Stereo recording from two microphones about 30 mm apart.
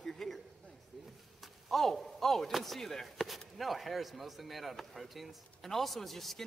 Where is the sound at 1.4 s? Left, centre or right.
Centre.